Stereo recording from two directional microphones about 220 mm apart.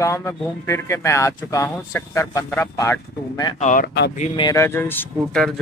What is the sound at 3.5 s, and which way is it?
Speech, 35° left (ahead or behind).